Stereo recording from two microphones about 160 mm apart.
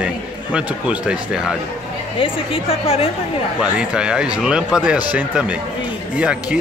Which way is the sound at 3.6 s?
5° right (ahead or behind).